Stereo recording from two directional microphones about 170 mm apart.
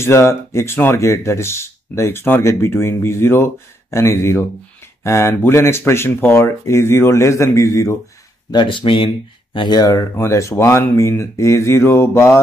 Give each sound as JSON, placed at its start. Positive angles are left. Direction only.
{"t": 0.0, "sound": "speech", "side_deg": 15}
{"t": 8.5, "sound": "speech", "side_deg": 30}